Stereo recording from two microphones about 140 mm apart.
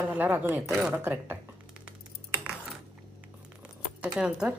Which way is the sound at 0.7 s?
Centre (ahead or behind).